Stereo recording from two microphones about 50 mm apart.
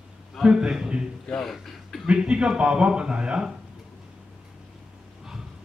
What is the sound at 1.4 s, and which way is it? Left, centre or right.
Speech, centre.